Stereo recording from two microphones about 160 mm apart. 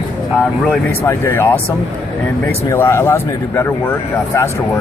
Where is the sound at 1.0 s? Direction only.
15° left (ahead or behind).